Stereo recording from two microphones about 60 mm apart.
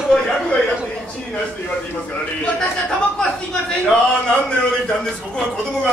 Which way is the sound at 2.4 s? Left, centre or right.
Centre.